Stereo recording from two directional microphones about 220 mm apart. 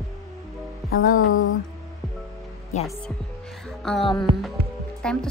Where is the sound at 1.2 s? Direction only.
65° left (ahead or behind).